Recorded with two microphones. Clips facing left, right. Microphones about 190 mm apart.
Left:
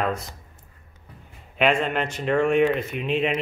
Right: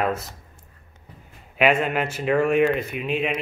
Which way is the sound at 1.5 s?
5° right (ahead or behind).